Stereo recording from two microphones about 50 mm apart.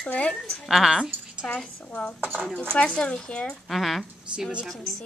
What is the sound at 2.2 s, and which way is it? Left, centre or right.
Speech, right.